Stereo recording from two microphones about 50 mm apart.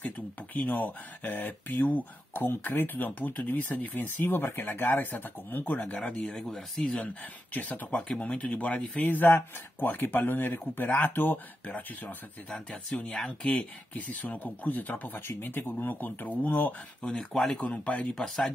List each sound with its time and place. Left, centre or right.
0.6 s speech: left
6.1 s speech: centre
7.5 s speech: left
9.1 s speech: left
12.5 s speech: left
13.9 s speech: left
17.0 s speech: left
18.1 s speech: centre